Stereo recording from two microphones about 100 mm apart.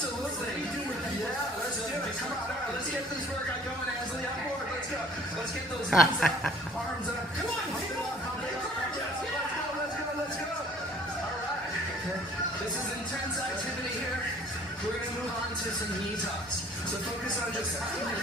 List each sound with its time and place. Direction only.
5.9 s a woman's voice: 5° left (ahead or behind)